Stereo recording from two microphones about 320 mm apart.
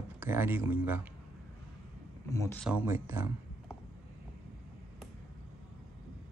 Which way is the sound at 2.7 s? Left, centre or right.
Centre.